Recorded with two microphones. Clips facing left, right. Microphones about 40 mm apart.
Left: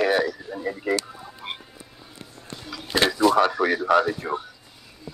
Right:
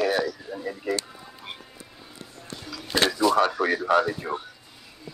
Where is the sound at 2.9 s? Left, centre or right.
Centre.